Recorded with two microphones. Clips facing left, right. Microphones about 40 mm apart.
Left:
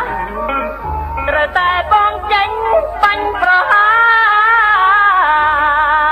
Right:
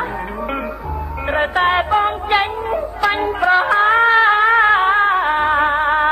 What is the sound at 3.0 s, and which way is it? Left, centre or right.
Music, centre.